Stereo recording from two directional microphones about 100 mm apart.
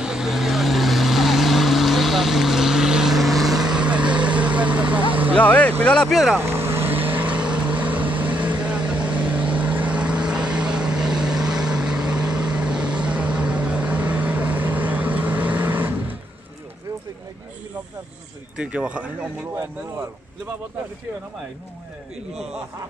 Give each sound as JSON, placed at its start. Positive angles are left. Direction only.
{"t": 0.0, "sound": "vehicle", "side_deg": -5}
{"t": 5.3, "sound": "speech", "side_deg": 15}
{"t": 6.1, "sound": "speech", "side_deg": -5}
{"t": 6.4, "sound": "vehicle", "side_deg": -25}
{"t": 18.6, "sound": "speech", "side_deg": -10}
{"t": 22.3, "sound": "speech", "side_deg": -5}